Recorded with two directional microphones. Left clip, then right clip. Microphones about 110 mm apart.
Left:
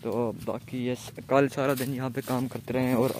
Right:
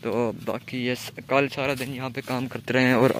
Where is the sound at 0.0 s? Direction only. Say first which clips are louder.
Right 4 dB; 5° right (ahead or behind).